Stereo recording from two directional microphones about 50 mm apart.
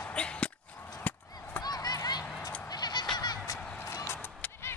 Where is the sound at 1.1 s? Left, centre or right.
Left.